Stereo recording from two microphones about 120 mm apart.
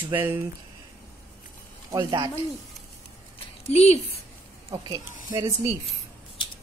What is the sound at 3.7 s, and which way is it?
Speech, 65° left (ahead or behind).